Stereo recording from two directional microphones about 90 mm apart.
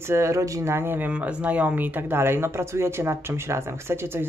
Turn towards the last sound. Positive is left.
turn(degrees=-25)  # may be behind; listen again after turning